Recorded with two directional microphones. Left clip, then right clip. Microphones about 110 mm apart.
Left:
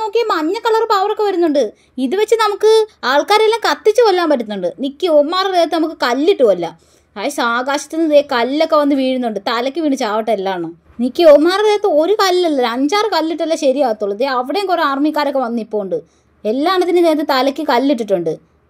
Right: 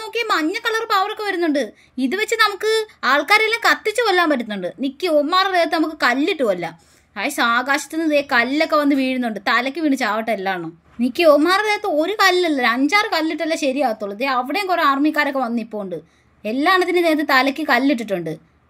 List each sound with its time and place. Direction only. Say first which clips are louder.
0.0 s a woman's voice: left 5 dB; 15° left (ahead or behind)